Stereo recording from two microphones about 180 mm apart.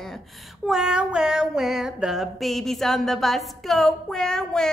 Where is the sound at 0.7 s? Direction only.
5° right (ahead or behind).